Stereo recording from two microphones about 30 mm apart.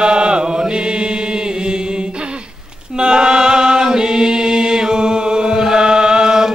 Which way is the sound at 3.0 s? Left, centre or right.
Right.